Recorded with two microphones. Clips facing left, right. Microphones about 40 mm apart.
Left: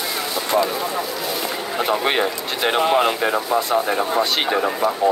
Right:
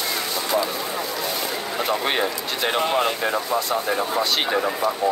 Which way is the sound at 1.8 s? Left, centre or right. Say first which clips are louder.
Left 4 dB; left.